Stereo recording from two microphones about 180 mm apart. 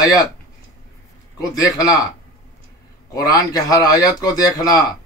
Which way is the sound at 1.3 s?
20° left (ahead or behind).